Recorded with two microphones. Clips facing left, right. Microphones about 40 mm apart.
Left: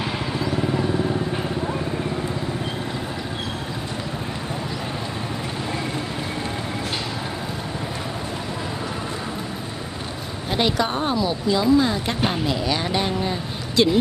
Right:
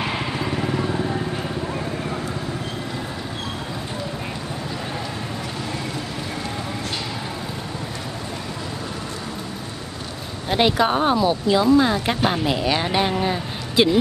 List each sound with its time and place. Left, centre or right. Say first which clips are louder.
10.5 s speech: right 4 dB; centre